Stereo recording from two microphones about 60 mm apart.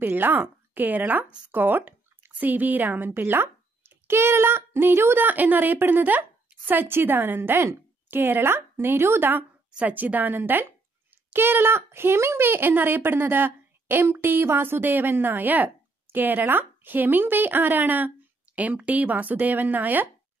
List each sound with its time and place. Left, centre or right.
0.0 s a woman's voice: right
9.7 s a woman's voice: right